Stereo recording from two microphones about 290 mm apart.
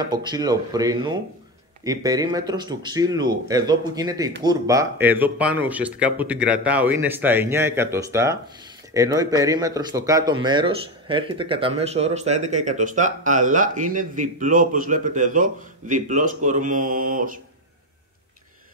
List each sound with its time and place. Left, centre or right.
0.0 s speech: centre